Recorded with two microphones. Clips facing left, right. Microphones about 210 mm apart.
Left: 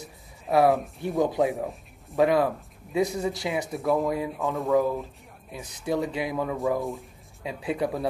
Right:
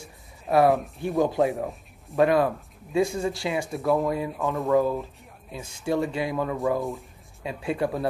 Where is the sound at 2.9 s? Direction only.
20° left (ahead or behind).